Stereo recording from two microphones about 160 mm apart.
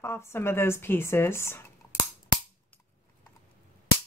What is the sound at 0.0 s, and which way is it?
Speech, 15° left (ahead or behind).